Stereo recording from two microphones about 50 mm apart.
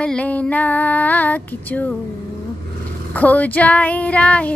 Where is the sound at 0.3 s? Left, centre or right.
Left.